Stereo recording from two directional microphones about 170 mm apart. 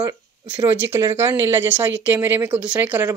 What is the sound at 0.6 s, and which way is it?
Speech, 15° right (ahead or behind).